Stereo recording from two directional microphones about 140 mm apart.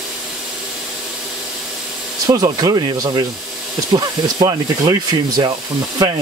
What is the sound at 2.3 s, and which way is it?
Speech, 25° right (ahead or behind).